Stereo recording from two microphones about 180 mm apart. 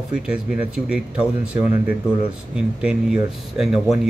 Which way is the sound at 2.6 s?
5° right (ahead or behind).